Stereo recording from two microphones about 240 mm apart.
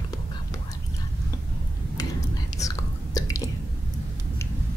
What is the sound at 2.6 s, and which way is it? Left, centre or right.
Whispering, centre.